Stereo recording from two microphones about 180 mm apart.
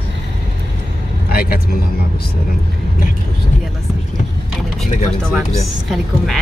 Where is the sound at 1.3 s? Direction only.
55° left (ahead or behind).